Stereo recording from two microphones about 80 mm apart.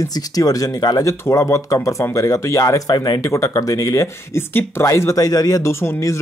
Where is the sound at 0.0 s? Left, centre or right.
Left.